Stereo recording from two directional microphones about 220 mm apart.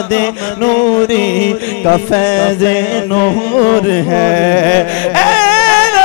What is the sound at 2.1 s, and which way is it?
Music, 20° left (ahead or behind).